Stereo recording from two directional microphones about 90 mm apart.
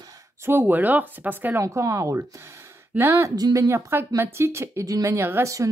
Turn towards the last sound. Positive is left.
turn(degrees=-30)  # may be behind; listen again after turning